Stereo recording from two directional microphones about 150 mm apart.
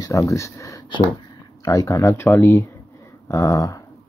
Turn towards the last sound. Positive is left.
turn(degrees=20)  # may be behind; listen again after turning